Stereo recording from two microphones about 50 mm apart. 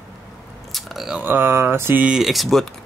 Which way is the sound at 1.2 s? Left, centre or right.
Right.